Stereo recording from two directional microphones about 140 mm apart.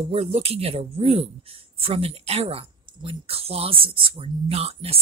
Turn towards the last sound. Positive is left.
turn(degrees=-45)  # may be behind; listen again after turning